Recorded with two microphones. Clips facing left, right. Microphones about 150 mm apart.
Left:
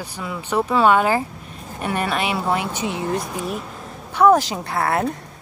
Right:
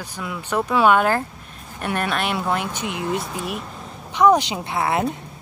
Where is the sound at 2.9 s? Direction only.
5° right (ahead or behind).